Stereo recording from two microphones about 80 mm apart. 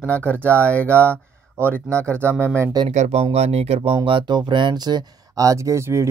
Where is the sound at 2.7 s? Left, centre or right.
Right.